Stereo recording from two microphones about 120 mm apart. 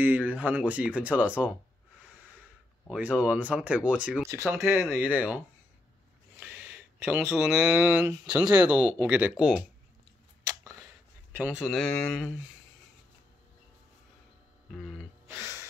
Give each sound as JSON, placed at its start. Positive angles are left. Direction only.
{"t": 0.0, "sound": "speech", "side_deg": -15}
{"t": 2.9, "sound": "speech", "side_deg": -10}
{"t": 4.3, "sound": "speech", "side_deg": -20}
{"t": 6.4, "sound": "speech", "side_deg": -5}
{"t": 10.4, "sound": "a sound", "side_deg": -30}
{"t": 11.3, "sound": "speech", "side_deg": -15}
{"t": 11.6, "sound": "speech", "side_deg": 5}
{"t": 14.7, "sound": "a sound", "side_deg": 0}
{"t": 15.2, "sound": "music", "side_deg": -20}